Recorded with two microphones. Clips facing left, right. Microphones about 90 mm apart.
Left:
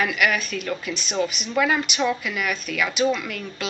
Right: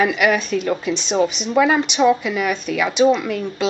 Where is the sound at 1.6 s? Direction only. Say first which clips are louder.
Right 6 dB; 10° right (ahead or behind).